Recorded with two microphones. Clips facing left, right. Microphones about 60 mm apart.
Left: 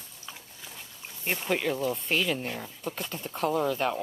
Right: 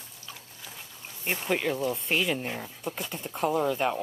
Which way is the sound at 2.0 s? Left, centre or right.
Centre.